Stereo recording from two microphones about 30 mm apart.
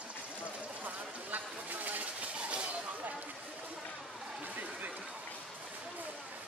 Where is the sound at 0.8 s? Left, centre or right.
Right.